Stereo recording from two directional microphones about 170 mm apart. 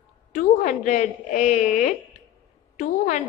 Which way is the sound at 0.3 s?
50° left (ahead or behind).